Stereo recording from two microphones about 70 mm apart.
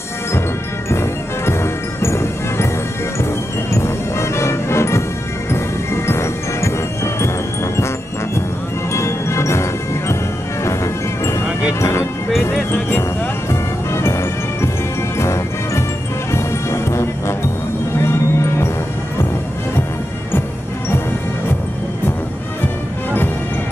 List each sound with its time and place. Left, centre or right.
0.8 s music: left
3.7 s music: left
8.9 s music: left
13.5 s music: left